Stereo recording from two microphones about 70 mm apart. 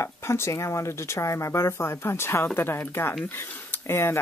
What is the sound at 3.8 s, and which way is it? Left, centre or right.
Speech, left.